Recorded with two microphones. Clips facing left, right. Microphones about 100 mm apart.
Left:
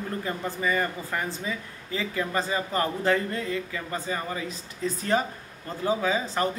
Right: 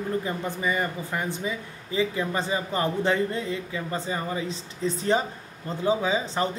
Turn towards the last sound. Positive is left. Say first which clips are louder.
# even
turn(degrees=-20)  # may be behind; listen again after turning